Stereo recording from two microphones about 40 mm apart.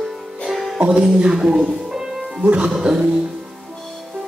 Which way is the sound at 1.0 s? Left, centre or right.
Centre.